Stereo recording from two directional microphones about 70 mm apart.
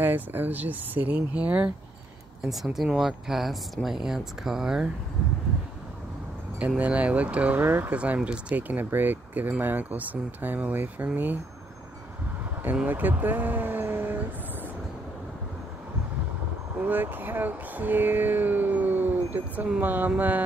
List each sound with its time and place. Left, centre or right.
0.0 s speech: right
2.4 s speech: centre
6.8 s speech: centre
12.8 s speech: right
16.7 s speech: right